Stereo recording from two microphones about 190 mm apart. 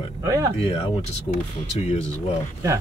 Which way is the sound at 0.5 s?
30° left (ahead or behind).